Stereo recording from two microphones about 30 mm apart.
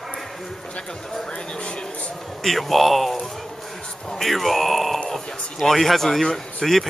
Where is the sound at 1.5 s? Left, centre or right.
Left.